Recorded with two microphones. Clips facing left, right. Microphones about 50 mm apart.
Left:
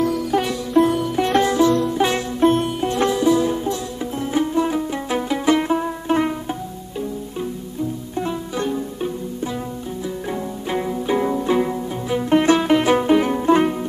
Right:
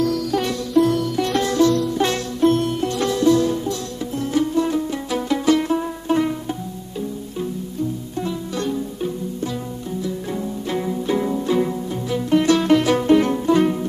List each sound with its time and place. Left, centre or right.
0.0 s music: left
3.2 s music: centre
8.2 s music: left
10.7 s music: centre